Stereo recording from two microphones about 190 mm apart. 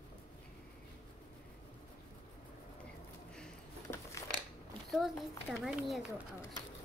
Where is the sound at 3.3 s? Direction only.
5° left (ahead or behind).